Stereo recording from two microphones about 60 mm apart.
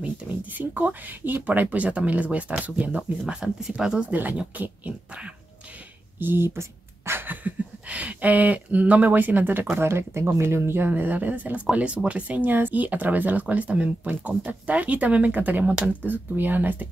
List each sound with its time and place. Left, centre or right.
0.6 s speech: right
3.4 s speech: centre
4.1 s speech: right
6.1 s speech: right